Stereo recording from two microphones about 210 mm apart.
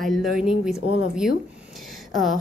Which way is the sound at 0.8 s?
60° left (ahead or behind).